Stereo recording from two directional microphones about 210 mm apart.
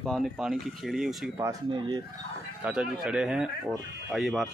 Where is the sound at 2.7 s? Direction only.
5° right (ahead or behind).